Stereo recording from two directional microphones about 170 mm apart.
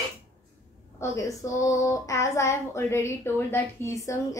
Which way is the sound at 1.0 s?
20° left (ahead or behind).